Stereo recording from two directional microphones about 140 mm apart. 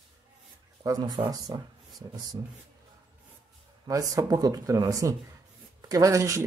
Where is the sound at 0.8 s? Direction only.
25° right (ahead or behind).